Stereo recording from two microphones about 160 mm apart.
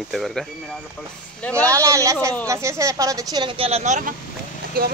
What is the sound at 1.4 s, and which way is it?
Speech, 10° left (ahead or behind).